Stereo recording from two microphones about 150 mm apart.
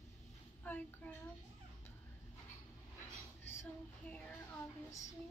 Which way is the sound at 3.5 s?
15° left (ahead or behind).